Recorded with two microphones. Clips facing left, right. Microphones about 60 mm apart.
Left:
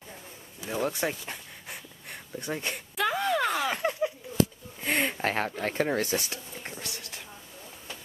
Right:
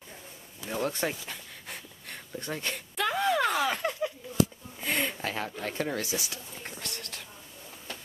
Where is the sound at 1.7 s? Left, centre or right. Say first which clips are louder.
Left 1 dB; centre.